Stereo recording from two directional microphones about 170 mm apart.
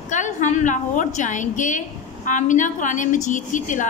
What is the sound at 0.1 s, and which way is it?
A woman's voice, 45° left (ahead or behind).